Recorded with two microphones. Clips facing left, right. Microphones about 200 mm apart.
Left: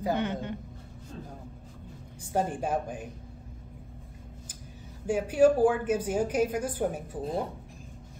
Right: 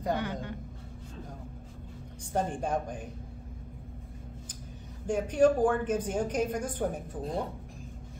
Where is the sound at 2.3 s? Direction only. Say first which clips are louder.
Left 2 dB; 5° left (ahead or behind).